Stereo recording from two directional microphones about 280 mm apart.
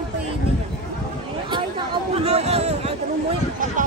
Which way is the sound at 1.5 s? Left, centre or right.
Centre.